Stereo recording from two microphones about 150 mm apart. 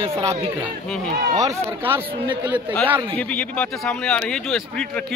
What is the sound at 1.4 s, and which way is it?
Speech, 20° right (ahead or behind).